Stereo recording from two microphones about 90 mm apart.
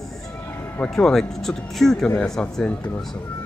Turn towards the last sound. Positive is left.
turn(degrees=15)  # may be behind; listen again after turning